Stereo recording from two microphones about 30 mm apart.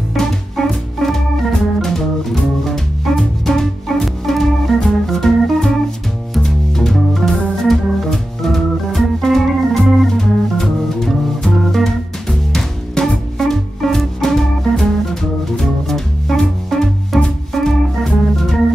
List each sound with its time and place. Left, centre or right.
0.6 s music: centre
0.9 s organ: centre
10.1 s music: centre
17.6 s organ: centre